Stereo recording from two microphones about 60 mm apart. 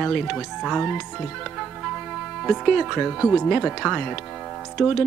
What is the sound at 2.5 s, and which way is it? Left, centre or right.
Speech, centre.